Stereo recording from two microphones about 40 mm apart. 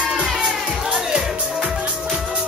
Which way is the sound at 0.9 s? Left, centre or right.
Centre.